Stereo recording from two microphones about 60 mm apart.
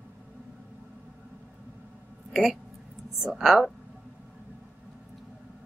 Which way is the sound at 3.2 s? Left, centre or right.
Centre.